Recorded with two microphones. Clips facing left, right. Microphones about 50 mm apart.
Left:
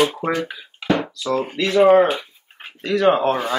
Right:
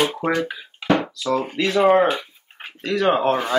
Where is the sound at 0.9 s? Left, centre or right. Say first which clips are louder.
Right 2 dB; centre.